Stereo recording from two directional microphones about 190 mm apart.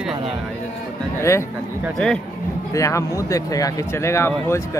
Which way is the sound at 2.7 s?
15° left (ahead or behind).